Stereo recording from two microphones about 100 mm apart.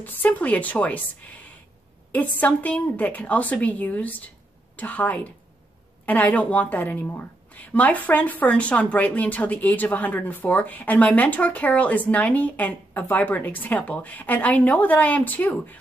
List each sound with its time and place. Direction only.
0.0 s a woman's voice: 15° left (ahead or behind)